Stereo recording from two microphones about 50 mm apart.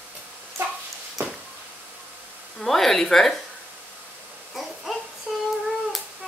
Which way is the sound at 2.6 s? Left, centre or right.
Centre.